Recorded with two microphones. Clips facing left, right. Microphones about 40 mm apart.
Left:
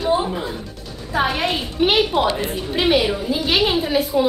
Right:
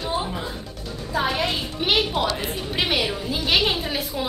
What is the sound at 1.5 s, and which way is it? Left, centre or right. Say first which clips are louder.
Speech: left 4 dB; centre.